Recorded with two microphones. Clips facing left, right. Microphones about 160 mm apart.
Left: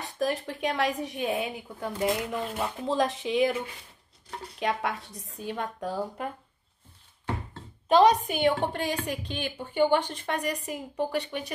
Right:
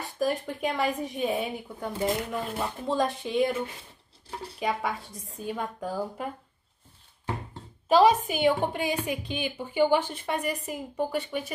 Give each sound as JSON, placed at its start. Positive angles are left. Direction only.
{"t": 0.0, "sound": "a woman's voice", "side_deg": 0}
{"t": 4.6, "sound": "a woman's voice", "side_deg": 0}
{"t": 7.9, "sound": "a woman's voice", "side_deg": -5}